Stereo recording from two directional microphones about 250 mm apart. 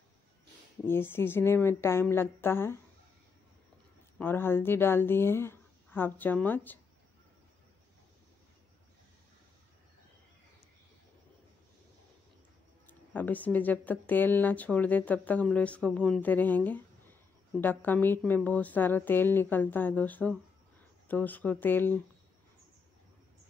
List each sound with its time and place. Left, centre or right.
0.8 s speech: centre
4.2 s speech: centre
12.8 s speech: centre